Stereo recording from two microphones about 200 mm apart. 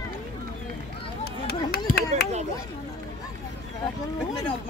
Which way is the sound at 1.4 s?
50° left (ahead or behind).